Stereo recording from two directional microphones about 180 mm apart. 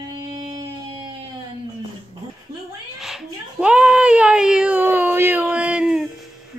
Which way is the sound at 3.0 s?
Centre (ahead or behind).